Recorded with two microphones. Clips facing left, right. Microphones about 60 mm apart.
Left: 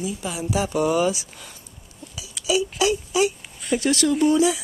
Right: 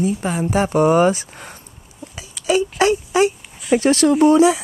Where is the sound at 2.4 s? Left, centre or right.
Right.